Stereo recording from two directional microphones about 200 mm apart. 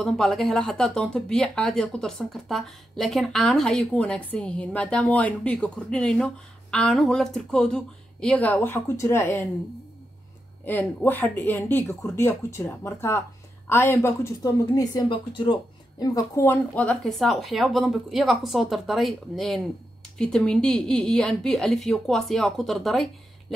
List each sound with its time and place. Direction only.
0.0 s speech: centre (ahead or behind)
10.6 s speech: 10° left (ahead or behind)